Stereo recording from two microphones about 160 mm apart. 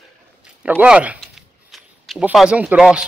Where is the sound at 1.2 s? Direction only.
Centre (ahead or behind).